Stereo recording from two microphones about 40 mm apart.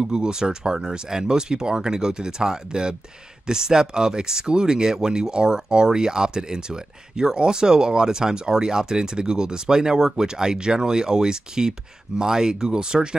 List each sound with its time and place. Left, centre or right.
0.0 s speech: right